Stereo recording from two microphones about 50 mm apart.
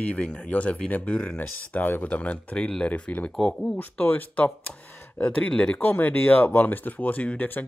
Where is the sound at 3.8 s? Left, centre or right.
Left.